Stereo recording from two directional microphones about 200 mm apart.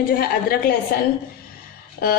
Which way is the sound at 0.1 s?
50° left (ahead or behind).